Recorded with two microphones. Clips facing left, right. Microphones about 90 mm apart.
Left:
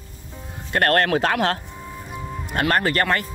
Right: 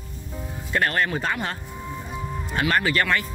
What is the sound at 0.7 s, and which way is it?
Speech, 60° left (ahead or behind).